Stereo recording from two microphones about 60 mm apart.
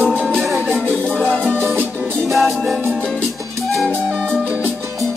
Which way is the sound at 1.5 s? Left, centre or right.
Right.